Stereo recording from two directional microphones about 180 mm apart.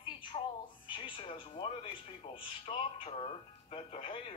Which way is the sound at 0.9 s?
30° left (ahead or behind).